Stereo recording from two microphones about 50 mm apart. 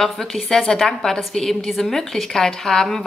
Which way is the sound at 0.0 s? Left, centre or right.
Centre.